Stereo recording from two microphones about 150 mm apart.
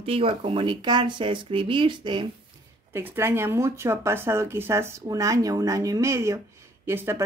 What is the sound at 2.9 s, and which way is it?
Speech, 15° right (ahead or behind).